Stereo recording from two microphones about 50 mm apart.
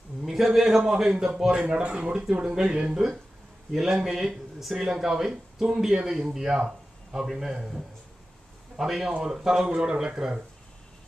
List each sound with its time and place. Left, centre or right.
0.2 s speech: centre
3.7 s speech: centre